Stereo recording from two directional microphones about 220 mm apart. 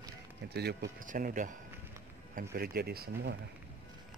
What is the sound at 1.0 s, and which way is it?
Speech, 35° right (ahead or behind).